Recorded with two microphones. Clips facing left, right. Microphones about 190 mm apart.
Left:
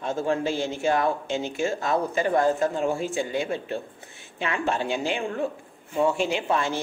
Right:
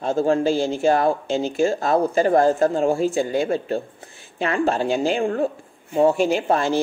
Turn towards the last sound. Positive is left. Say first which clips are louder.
# right 6 dB
turn(degrees=-40)  # may be behind; listen again after turning